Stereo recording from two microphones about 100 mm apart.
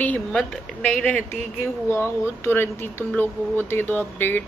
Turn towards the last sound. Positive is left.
turn(degrees=20)  # may be behind; listen again after turning